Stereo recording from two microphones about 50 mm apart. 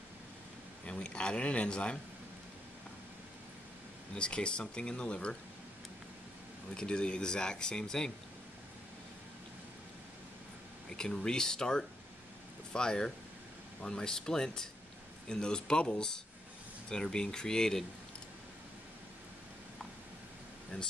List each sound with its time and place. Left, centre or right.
0.8 s speech: left
4.1 s speech: centre
6.7 s speech: centre
10.9 s speech: centre
20.7 s speech: left